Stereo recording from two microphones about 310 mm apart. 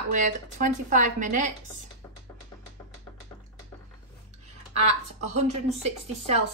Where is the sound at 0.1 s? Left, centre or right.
Right.